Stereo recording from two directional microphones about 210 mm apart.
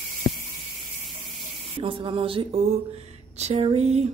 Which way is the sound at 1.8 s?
25° right (ahead or behind).